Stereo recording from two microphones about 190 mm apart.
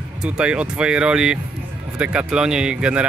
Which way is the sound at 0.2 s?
5° right (ahead or behind).